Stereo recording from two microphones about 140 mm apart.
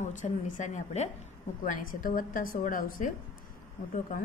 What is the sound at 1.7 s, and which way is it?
A woman's voice, 75° left (ahead or behind).